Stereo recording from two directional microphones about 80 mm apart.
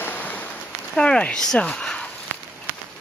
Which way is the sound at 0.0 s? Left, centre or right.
Left.